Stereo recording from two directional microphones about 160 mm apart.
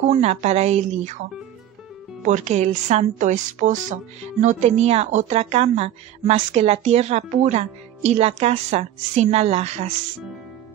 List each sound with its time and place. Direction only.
0.1 s a woman's voice: 45° right (ahead or behind)
2.2 s a woman's voice: 45° right (ahead or behind)